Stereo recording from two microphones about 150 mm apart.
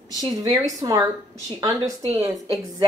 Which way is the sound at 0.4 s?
20° right (ahead or behind).